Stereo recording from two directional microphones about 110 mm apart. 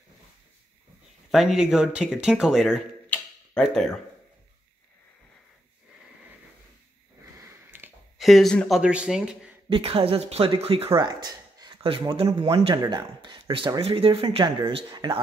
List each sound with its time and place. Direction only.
1.3 s speech: 5° right (ahead or behind)
3.1 s tick-tock: 5° left (ahead or behind)
7.7 s a sound: 15° right (ahead or behind)
8.2 s speech: centre (ahead or behind)
9.7 s speech: 55° right (ahead or behind)
11.0 s a sound: 40° right (ahead or behind)
11.8 s speech: 50° right (ahead or behind)
12.4 s speech: 55° right (ahead or behind)